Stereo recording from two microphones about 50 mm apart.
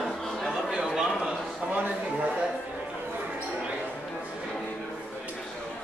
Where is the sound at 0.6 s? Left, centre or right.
Centre.